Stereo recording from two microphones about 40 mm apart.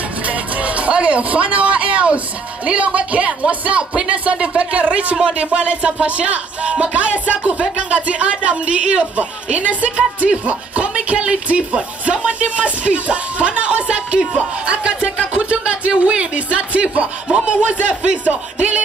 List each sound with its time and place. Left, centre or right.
0.3 s music: right